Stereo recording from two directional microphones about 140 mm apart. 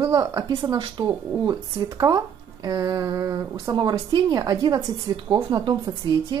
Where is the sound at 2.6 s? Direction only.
30° right (ahead or behind).